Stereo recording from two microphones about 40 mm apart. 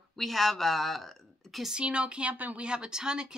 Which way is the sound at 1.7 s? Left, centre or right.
Right.